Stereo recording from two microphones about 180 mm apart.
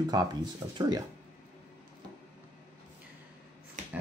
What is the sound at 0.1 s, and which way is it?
Speech, 20° right (ahead or behind).